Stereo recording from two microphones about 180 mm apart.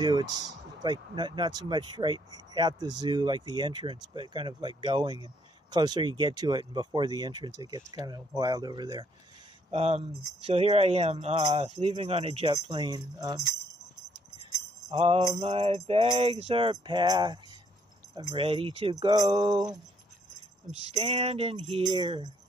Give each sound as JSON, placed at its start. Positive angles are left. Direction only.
{"t": 0.0, "sound": "speech", "side_deg": -20}
{"t": 9.7, "sound": "music", "side_deg": -35}
{"t": 12.5, "sound": "speech", "side_deg": -25}
{"t": 14.9, "sound": "music", "side_deg": -35}
{"t": 18.3, "sound": "speech", "side_deg": -30}
{"t": 20.9, "sound": "music", "side_deg": -35}